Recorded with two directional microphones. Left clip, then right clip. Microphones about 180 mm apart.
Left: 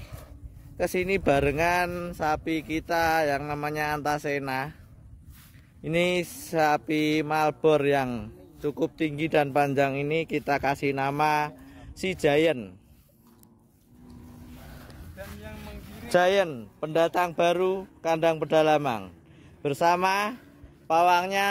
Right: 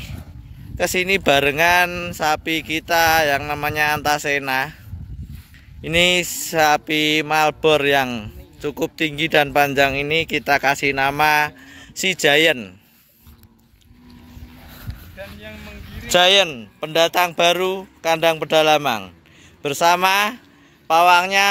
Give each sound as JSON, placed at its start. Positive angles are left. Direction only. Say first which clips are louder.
{"t": 0.7, "sound": "mantra", "louder": "right 8 dB", "side_deg": 0}
{"t": 5.8, "sound": "mantra", "louder": "right 9 dB", "side_deg": -5}
{"t": 16.1, "sound": "mantra", "louder": "right 8 dB", "side_deg": 5}